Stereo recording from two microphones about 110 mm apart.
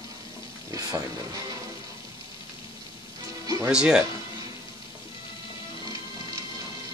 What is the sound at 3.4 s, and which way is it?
Music, 30° right (ahead or behind).